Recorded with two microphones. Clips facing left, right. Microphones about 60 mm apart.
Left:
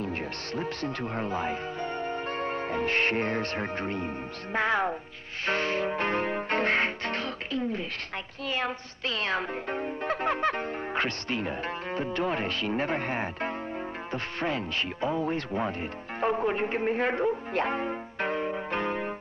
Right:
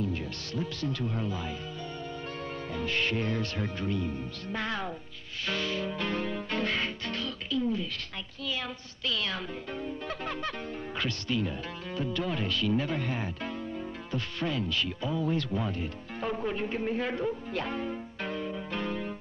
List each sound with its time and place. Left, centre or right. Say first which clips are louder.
0.0 s speech: left 1 dB; left